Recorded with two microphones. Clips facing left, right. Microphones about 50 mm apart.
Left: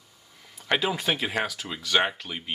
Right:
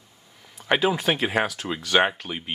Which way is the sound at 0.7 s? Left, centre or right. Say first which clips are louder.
Right 4 dB; centre.